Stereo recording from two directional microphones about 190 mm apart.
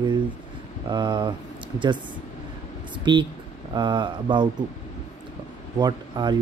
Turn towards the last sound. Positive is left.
turn(degrees=-20)  # may be behind; listen again after turning